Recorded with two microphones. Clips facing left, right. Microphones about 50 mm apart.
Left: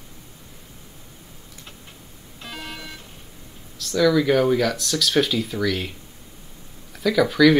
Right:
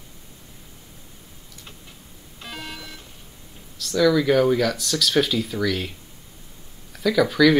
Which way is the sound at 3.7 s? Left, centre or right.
Centre.